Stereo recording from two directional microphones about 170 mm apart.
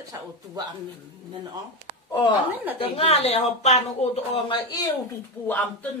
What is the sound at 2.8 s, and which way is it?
Speech, 35° left (ahead or behind).